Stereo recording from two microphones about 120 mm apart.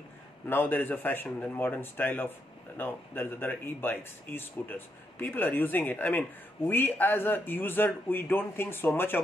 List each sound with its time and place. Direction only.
0.5 s speech: 15° left (ahead or behind)